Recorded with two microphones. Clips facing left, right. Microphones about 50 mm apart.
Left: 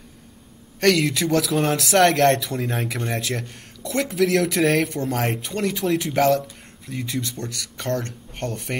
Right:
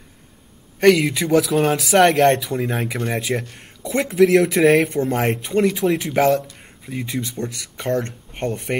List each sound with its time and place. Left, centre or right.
0.7 s speech: centre